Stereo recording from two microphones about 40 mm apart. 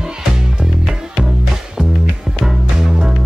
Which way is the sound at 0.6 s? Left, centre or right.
Centre.